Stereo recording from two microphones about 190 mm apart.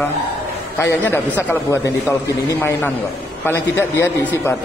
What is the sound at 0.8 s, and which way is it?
A man's voice, 10° left (ahead or behind).